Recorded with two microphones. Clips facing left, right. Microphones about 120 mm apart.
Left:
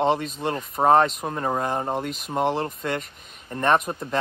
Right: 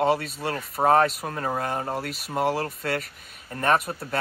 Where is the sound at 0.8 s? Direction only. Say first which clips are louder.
Left 2 dB; 15° left (ahead or behind).